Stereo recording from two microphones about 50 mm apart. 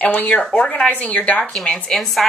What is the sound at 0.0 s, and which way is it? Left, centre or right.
A woman's voice, left.